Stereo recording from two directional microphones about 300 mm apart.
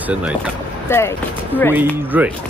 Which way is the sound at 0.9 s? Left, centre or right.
Centre.